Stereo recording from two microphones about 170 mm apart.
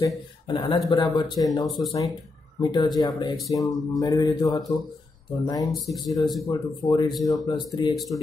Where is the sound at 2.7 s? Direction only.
25° left (ahead or behind).